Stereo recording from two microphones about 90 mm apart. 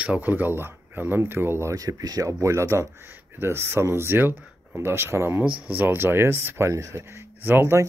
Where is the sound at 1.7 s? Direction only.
40° right (ahead or behind).